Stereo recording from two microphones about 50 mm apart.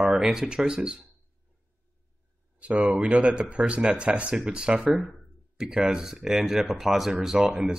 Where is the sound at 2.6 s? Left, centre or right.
Right.